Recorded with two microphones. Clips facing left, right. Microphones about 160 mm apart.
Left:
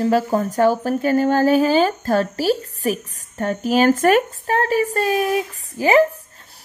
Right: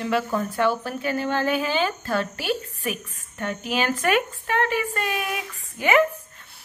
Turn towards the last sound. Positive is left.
turn(degrees=35)  # may be behind; listen again after turning